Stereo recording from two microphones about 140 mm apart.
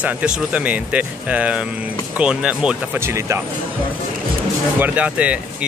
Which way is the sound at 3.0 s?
20° right (ahead or behind).